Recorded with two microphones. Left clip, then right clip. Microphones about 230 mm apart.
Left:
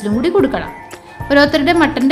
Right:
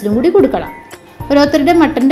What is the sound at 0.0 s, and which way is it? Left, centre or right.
A woman's voice, centre.